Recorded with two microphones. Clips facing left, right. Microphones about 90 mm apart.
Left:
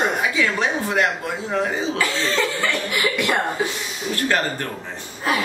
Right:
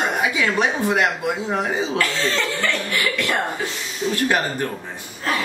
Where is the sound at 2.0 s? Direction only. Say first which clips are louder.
Left 1 dB; 5° left (ahead or behind).